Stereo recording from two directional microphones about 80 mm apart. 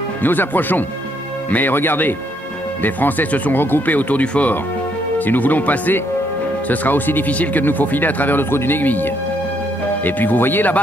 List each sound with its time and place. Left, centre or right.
0.2 s speech: left